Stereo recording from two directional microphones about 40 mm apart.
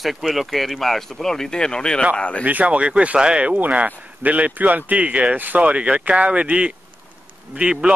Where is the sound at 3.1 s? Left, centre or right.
Right.